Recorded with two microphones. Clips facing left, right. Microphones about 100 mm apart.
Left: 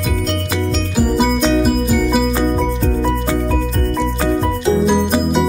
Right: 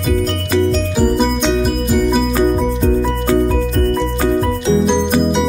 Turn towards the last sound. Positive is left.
turn(degrees=5)  # may be behind; listen again after turning